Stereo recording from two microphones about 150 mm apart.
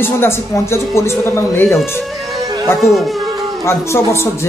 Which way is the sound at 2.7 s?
Centre (ahead or behind).